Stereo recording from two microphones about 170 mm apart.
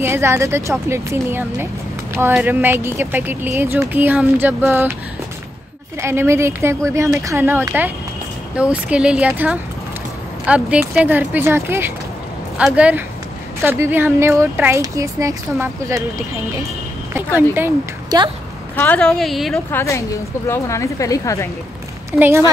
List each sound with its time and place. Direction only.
0.0 s speech: 15° right (ahead or behind)
5.9 s speech: 15° right (ahead or behind)
17.4 s a woman's voice: 15° right (ahead or behind)
18.8 s a woman's voice: 5° left (ahead or behind)
19.7 s a woman's voice: 15° left (ahead or behind)
22.1 s speech: 10° right (ahead or behind)